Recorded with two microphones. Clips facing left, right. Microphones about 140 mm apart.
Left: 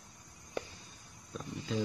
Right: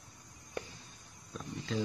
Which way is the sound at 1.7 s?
Centre (ahead or behind).